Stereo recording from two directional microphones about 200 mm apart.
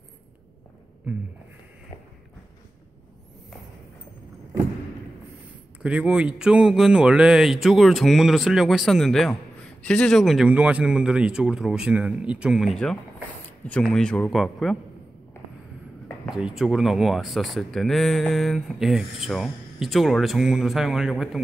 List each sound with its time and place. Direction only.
1.1 s speech: 5° right (ahead or behind)
5.8 s speech: 5° right (ahead or behind)
16.3 s speech: 5° right (ahead or behind)